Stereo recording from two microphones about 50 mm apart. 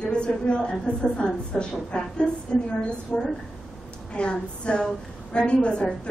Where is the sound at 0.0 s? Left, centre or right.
Left.